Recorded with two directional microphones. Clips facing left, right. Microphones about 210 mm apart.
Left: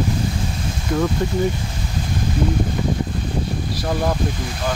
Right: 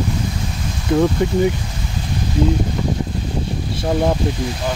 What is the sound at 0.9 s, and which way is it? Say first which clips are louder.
Speech: right 5 dB; 25° right (ahead or behind).